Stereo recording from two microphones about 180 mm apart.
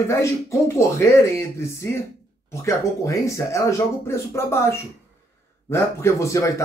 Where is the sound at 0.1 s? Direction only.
15° left (ahead or behind).